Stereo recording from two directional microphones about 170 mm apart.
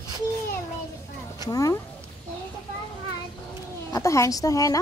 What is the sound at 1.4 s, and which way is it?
Speech, 20° left (ahead or behind).